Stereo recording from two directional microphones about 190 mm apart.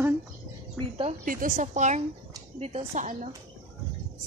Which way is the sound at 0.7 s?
25° right (ahead or behind).